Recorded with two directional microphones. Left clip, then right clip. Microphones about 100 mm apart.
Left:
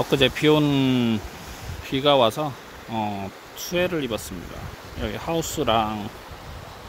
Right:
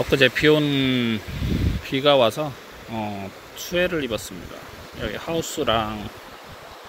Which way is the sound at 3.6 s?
15° left (ahead or behind).